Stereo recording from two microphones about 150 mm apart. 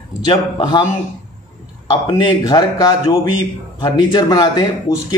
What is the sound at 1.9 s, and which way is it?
Speech, 30° left (ahead or behind).